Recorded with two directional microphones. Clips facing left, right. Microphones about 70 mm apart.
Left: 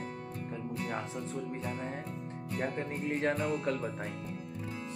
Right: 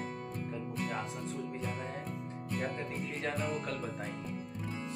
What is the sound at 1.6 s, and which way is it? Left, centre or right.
Speech, left.